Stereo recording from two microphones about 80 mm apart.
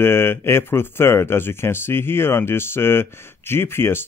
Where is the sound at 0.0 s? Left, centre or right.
Left.